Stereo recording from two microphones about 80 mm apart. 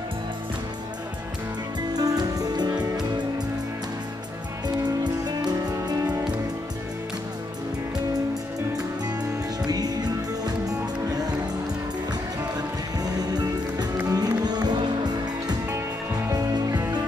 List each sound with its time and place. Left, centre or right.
2.0 s music: right
4.6 s music: right
9.7 s music: right
13.0 s music: right
16.3 s music: right